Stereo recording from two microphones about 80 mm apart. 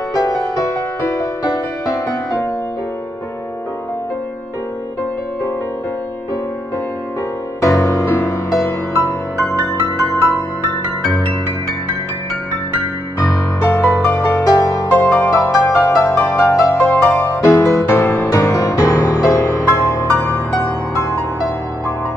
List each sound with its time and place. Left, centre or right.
0.1 s music: left
7.6 s music: left
13.6 s music: left
14.4 s music: left
20.2 s music: left